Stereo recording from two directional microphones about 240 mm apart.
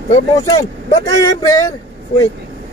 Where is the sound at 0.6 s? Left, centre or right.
Centre.